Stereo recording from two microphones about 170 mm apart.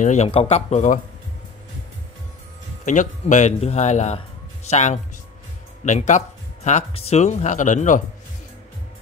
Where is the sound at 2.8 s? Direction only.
45° left (ahead or behind).